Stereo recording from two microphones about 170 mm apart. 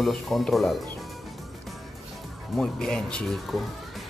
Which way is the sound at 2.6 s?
5° left (ahead or behind).